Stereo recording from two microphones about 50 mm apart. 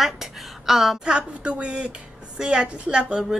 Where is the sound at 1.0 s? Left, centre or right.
Centre.